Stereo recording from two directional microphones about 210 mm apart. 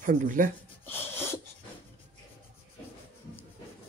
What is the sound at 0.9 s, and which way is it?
Wheeze, 10° left (ahead or behind).